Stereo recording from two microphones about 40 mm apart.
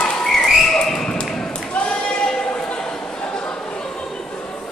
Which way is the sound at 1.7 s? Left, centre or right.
Left.